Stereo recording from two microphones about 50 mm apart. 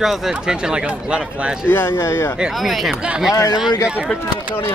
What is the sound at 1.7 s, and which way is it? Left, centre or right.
Speech, left.